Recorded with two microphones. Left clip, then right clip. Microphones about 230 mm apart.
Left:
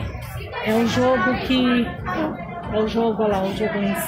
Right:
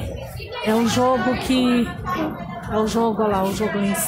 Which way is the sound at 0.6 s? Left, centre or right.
Right.